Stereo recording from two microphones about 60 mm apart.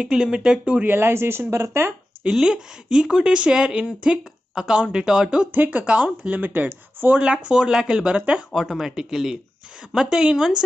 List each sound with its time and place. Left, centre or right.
0.0 s speech: centre
0.8 s speech: right
2.4 s speech: centre
5.5 s speech: right
7.1 s speech: centre
8.5 s speech: centre